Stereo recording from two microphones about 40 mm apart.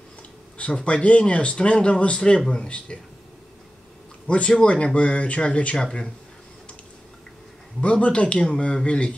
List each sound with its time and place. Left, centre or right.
0.6 s a man's voice: left
4.3 s a man's voice: left
5.8 s a man's voice: left
7.8 s a man's voice: left